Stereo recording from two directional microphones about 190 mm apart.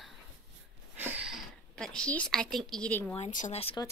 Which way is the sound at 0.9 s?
10° right (ahead or behind).